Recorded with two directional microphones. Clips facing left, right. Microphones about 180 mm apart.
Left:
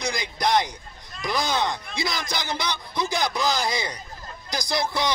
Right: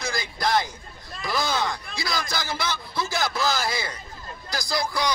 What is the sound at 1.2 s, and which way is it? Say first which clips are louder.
Speech: left 1 dB; 20° left (ahead or behind).